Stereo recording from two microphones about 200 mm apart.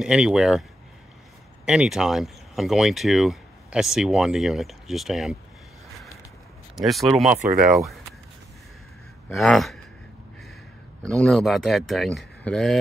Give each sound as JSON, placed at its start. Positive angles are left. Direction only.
{"t": 0.0, "sound": "speech", "side_deg": -5}
{"t": 1.7, "sound": "speech", "side_deg": -5}
{"t": 6.7, "sound": "speech", "side_deg": 0}
{"t": 7.2, "sound": "speech", "side_deg": -40}
{"t": 9.3, "sound": "speech", "side_deg": 0}
{"t": 11.0, "sound": "speech", "side_deg": 5}